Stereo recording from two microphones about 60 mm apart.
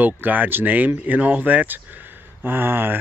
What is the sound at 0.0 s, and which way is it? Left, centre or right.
Speech, right.